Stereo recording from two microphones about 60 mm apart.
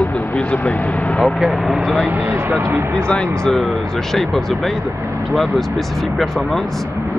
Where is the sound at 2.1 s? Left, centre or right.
Right.